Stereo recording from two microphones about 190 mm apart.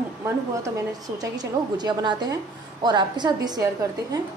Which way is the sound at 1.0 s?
20° right (ahead or behind).